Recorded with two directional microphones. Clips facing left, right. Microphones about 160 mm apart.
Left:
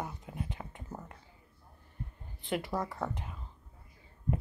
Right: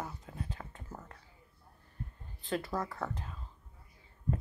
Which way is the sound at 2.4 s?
15° left (ahead or behind).